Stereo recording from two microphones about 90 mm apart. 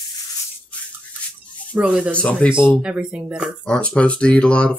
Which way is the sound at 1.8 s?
10° right (ahead or behind).